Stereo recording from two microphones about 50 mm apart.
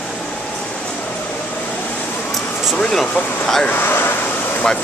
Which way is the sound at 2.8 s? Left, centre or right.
Centre.